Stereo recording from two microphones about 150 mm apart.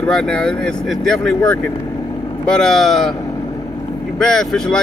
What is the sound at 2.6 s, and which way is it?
Speech, centre (ahead or behind).